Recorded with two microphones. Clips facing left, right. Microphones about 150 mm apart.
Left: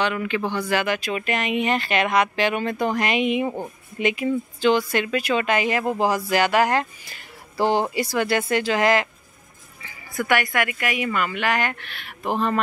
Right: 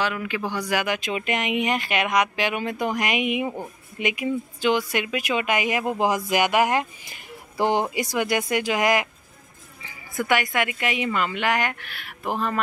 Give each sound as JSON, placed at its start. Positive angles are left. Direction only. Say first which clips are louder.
{"t": 0.0, "sound": "a woman's voice", "louder": "left 3 dB", "side_deg": -5}